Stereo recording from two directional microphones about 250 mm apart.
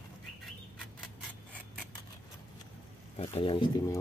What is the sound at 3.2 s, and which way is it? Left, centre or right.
Speech, left.